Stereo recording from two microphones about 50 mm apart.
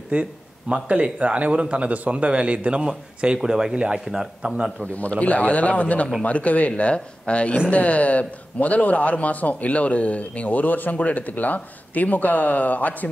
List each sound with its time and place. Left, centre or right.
0.1 s a sound: right
0.8 s a man's voice: right; by 4.8 s centre
4.9 s speech: left